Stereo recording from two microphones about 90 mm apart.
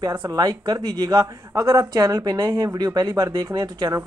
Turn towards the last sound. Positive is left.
turn(degrees=-35)  # may be behind; listen again after turning